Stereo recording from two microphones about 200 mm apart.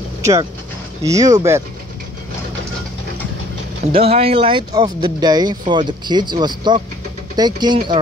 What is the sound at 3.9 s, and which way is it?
Speech, 30° right (ahead or behind).